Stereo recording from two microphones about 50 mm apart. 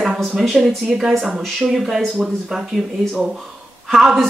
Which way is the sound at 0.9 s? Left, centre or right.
Centre.